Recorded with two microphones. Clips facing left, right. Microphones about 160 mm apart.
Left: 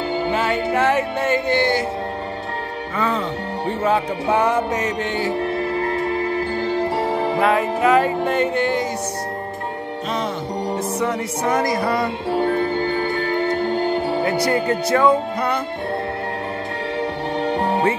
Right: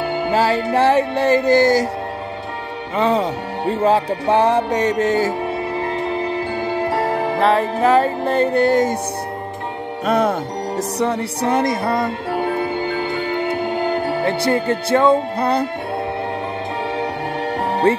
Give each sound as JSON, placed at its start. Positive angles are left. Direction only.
{"t": 0.3, "sound": "music", "side_deg": -35}
{"t": 3.0, "sound": "music", "side_deg": -35}
{"t": 5.8, "sound": "music", "side_deg": -20}
{"t": 7.4, "sound": "music", "side_deg": -30}
{"t": 10.0, "sound": "music", "side_deg": -55}
{"t": 10.8, "sound": "music", "side_deg": -35}
{"t": 14.2, "sound": "music", "side_deg": -25}
{"t": 17.6, "sound": "music", "side_deg": 0}